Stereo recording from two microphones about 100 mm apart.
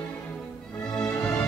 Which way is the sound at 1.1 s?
10° left (ahead or behind).